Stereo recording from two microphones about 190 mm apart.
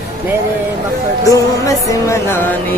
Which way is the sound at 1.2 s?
15° left (ahead or behind).